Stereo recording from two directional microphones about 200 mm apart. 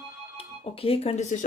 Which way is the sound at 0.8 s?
30° left (ahead or behind).